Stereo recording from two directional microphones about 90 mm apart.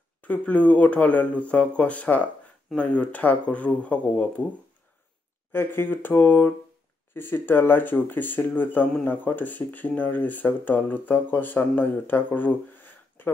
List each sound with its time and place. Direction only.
0.2 s speech: 15° left (ahead or behind)
5.5 s speech: 25° left (ahead or behind)